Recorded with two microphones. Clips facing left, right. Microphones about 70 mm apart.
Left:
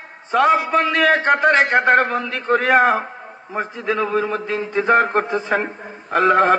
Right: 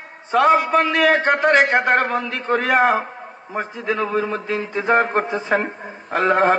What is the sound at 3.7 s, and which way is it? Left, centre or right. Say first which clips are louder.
Speech: left 1 dB; left.